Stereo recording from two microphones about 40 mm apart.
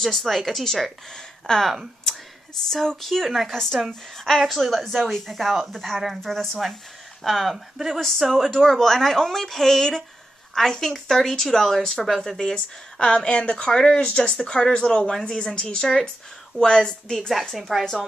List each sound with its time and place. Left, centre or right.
0.2 s speech: centre
1.1 s speech: centre
2.7 s speech: centre
4.6 s a woman's voice: centre
6.3 s speech: centre
12.5 s speech: left
13.9 s speech: left
17.6 s speech: centre